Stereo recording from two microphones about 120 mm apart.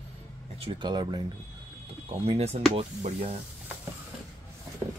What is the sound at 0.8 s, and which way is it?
Speech, 35° right (ahead or behind).